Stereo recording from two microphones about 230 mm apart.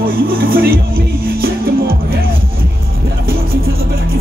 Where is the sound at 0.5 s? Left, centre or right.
Right.